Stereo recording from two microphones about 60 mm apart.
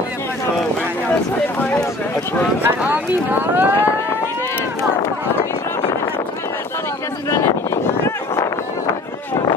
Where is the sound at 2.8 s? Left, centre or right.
Right.